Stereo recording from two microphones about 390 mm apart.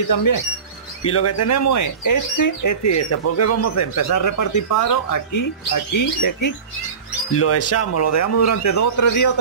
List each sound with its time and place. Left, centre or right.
0.1 s speech: left
1.0 s speech: left
7.3 s speech: left